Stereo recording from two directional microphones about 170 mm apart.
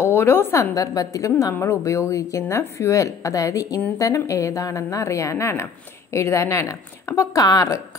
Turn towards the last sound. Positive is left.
turn(degrees=20)  # may be behind; listen again after turning